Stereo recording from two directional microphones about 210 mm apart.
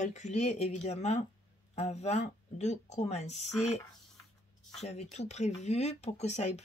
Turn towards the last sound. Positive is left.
turn(degrees=30)  # may be behind; listen again after turning